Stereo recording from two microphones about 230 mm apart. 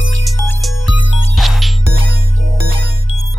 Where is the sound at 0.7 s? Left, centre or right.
Left.